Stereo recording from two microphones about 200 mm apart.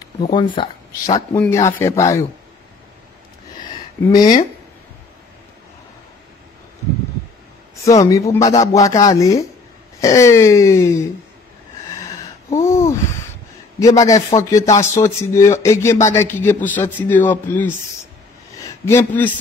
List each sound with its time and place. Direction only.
0.2 s speech: 25° left (ahead or behind)
4.1 s speech: 20° left (ahead or behind)
7.8 s speech: 15° left (ahead or behind)
12.4 s a sound: 15° left (ahead or behind)
13.7 s speech: 15° left (ahead or behind)
18.9 s speech: 10° left (ahead or behind)